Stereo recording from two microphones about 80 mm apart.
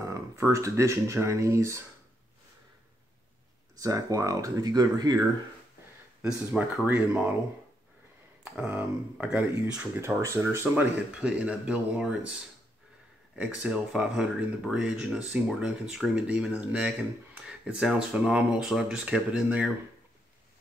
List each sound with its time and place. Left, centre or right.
0.0 s speech: right
3.7 s speech: right
6.2 s speech: centre
8.5 s speech: centre
9.9 s speech: right
11.1 s speech: centre
13.4 s speech: centre